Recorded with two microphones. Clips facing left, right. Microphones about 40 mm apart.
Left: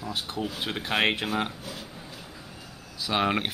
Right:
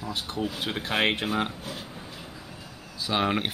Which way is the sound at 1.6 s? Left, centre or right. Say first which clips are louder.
Right 2 dB; centre.